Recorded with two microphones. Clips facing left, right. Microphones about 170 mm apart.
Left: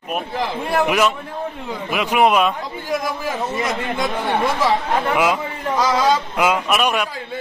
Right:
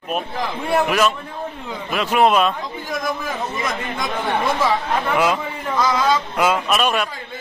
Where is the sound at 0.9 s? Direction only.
15° left (ahead or behind).